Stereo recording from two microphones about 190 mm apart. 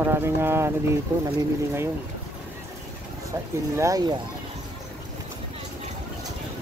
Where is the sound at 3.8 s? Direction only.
20° right (ahead or behind).